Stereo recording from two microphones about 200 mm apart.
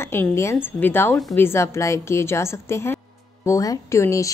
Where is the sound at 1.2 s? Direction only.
Centre (ahead or behind).